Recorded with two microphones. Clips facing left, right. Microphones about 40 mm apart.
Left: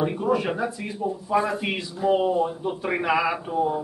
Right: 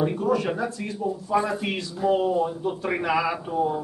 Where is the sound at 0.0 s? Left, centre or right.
Centre.